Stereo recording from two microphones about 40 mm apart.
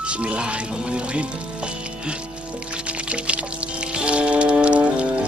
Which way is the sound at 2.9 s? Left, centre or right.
Right.